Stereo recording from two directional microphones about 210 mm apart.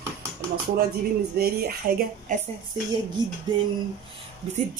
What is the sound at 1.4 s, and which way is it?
Speech, 45° right (ahead or behind).